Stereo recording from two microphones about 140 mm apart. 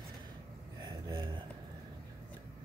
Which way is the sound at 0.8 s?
30° right (ahead or behind).